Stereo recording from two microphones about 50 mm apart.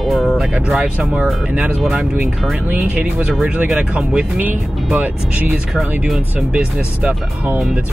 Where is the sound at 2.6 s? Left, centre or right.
Right.